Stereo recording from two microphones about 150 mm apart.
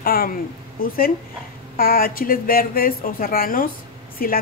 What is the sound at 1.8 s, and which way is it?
A woman's voice, 75° left (ahead or behind).